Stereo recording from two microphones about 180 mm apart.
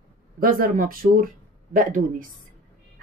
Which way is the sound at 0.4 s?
50° right (ahead or behind).